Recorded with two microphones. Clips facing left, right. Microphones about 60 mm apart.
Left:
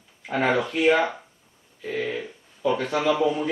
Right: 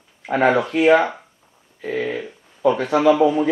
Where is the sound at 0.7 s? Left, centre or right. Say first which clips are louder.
Right 5 dB; right.